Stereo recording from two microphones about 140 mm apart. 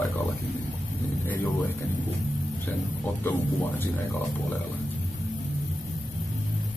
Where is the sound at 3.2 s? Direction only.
15° left (ahead or behind).